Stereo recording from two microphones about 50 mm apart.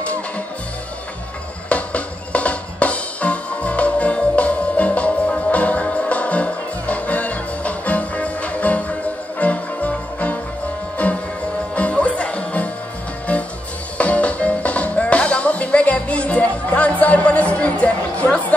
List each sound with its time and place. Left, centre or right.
1.7 s music: left